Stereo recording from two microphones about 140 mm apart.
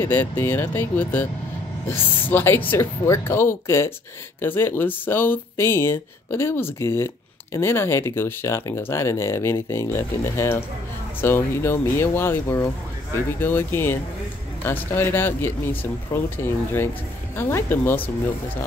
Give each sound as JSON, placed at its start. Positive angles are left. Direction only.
{"t": 0.0, "sound": "speech", "side_deg": 15}
{"t": 17.4, "sound": "speech", "side_deg": 15}